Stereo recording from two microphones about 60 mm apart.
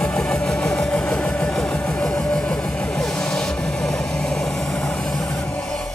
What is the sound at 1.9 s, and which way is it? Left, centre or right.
Music, left.